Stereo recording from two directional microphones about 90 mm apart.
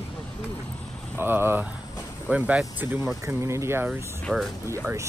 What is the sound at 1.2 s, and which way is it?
Speech, 25° right (ahead or behind).